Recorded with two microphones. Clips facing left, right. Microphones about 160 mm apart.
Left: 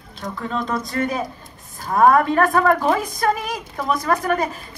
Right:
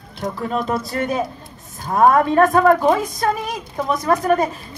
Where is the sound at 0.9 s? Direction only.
25° right (ahead or behind).